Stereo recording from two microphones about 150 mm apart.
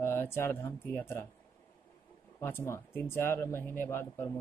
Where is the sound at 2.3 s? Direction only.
15° left (ahead or behind).